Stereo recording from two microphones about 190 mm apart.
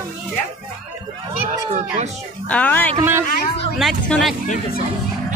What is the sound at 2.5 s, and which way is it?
Speech, 10° left (ahead or behind).